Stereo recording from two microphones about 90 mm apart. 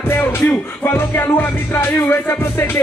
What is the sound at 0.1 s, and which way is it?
Music, 25° left (ahead or behind).